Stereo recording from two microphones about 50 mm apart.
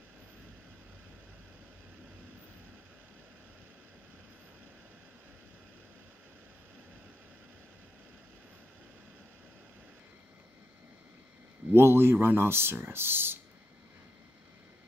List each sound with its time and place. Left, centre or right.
11.7 s speech: right